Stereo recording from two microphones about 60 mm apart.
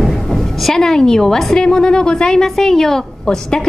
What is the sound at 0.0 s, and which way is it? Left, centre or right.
A woman's voice, centre.